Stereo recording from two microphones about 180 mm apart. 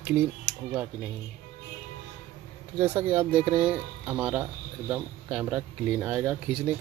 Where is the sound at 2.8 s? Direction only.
10° right (ahead or behind).